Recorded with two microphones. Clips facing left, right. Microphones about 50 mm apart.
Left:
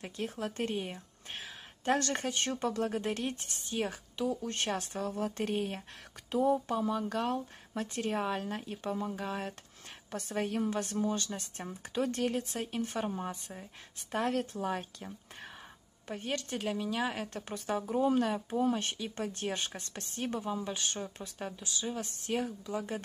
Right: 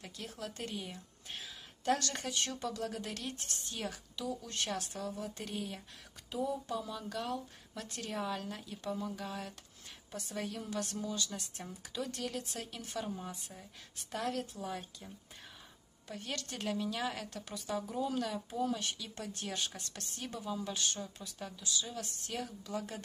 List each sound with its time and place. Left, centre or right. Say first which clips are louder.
0.0 s a woman's voice: left 7 dB; left
16.1 s speech: left 5 dB; left
16.5 s speech: left 2 dB; centre
17.3 s a woman's voice: left 4 dB; left